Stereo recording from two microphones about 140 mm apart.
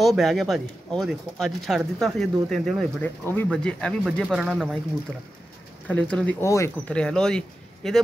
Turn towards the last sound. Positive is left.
turn(degrees=5)  # may be behind; listen again after turning